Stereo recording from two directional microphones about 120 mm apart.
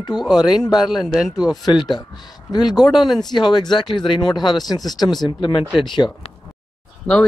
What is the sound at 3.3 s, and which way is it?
Speech, 40° left (ahead or behind).